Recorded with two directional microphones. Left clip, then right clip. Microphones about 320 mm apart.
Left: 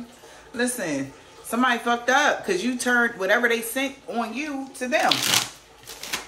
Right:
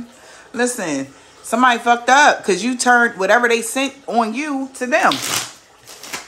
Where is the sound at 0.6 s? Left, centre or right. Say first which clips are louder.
Right 6 dB; centre.